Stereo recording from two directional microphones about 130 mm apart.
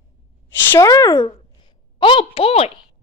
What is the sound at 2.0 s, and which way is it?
Speech, 45° left (ahead or behind).